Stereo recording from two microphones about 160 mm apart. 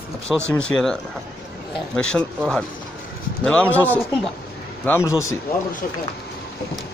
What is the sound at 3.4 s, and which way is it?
Speech, 10° left (ahead or behind).